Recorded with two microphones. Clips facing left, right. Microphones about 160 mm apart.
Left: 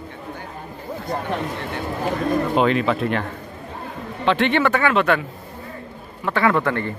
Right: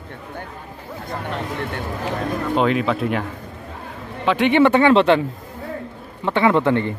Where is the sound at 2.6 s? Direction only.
Centre (ahead or behind).